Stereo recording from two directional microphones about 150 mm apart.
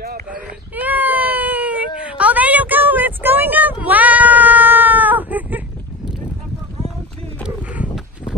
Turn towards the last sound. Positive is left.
turn(degrees=-10)  # may be behind; listen again after turning